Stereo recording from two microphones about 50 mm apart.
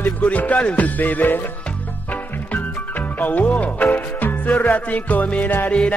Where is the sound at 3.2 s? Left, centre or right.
Left.